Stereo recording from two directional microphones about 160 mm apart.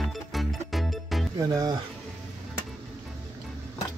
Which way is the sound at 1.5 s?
20° right (ahead or behind).